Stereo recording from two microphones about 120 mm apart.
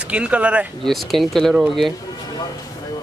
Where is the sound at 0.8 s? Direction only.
Centre (ahead or behind).